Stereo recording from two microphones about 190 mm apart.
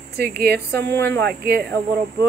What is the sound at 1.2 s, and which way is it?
Speech, 55° right (ahead or behind).